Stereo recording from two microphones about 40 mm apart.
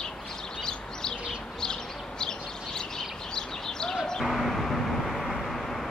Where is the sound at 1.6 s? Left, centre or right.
Centre.